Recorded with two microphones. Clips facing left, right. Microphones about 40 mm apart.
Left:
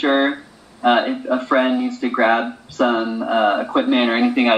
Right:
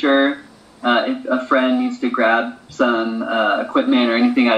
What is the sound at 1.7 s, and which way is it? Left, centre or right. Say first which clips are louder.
Speech: right 2 dB; centre.